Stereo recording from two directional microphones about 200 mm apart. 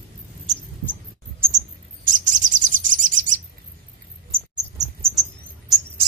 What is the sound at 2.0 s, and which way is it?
Chirp, 40° right (ahead or behind).